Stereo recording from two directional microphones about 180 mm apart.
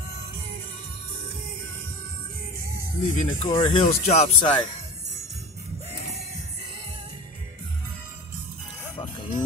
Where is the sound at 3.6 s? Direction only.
30° left (ahead or behind).